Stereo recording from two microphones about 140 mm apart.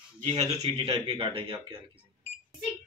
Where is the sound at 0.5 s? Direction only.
45° right (ahead or behind).